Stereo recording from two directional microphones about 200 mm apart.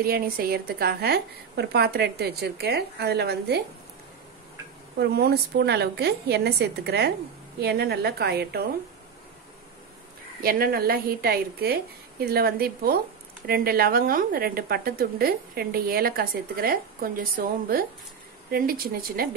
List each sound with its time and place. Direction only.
0.0 s a woman's voice: 50° right (ahead or behind)
4.9 s a woman's voice: 50° right (ahead or behind)
10.4 s a woman's voice: 45° right (ahead or behind)